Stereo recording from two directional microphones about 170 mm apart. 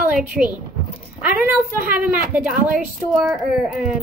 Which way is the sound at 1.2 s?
10° right (ahead or behind).